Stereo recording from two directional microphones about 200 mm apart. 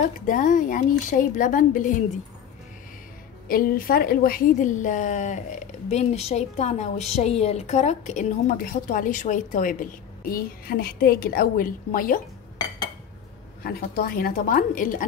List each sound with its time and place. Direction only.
0.0 s a woman's voice: 40° left (ahead or behind)
3.4 s a woman's voice: 45° left (ahead or behind)
13.7 s a woman's voice: 45° left (ahead or behind)